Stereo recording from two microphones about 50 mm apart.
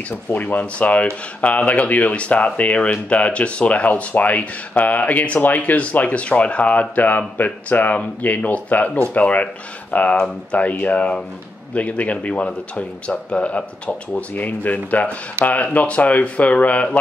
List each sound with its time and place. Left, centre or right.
0.3 s speech: left